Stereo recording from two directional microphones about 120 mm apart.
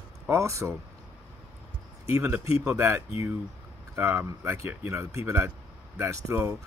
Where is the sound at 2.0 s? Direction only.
20° right (ahead or behind).